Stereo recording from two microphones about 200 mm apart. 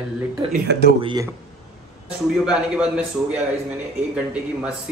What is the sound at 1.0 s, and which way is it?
Speech, 20° right (ahead or behind).